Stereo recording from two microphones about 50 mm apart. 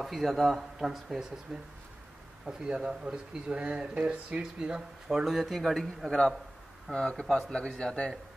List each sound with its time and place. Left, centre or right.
0.0 s speech: centre
6.9 s speech: centre
7.2 s speech: centre
7.5 s a man's voice: centre